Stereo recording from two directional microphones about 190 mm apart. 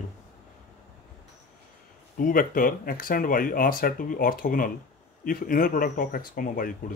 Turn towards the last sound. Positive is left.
turn(degrees=50)  # may be behind; listen again after turning